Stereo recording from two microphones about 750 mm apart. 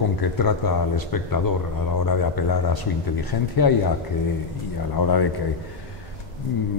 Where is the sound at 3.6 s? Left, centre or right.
Left.